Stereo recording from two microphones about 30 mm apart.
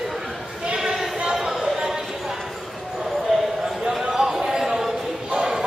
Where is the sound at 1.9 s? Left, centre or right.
Centre.